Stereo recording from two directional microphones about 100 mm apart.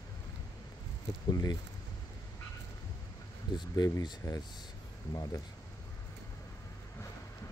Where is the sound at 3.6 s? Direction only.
45° left (ahead or behind).